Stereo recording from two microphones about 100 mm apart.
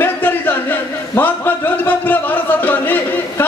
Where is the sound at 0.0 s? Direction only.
20° left (ahead or behind).